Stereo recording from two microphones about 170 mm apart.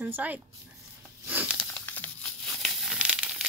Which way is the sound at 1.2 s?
10° right (ahead or behind).